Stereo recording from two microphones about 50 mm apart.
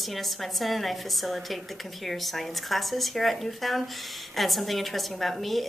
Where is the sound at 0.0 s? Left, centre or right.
Centre.